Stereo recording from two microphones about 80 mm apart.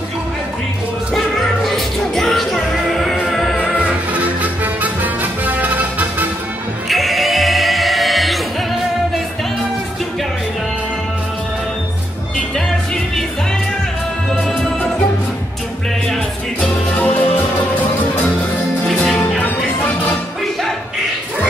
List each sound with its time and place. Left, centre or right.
1.7 s music: centre
3.5 s music: centre
6.9 s music: centre
12.5 s music: centre
14.3 s music: centre
16.9 s music: centre
19.4 s music: left